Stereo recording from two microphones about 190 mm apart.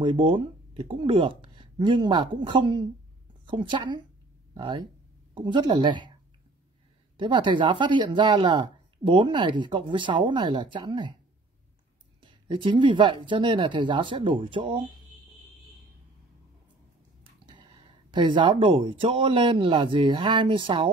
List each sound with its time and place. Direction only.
0.0 s speech: 30° right (ahead or behind)
7.2 s speech: 25° right (ahead or behind)
12.2 s speech: 25° right (ahead or behind)
17.2 s a sound: 25° right (ahead or behind)
18.1 s speech: 25° right (ahead or behind)